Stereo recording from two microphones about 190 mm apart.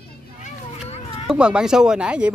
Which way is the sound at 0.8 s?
35° left (ahead or behind).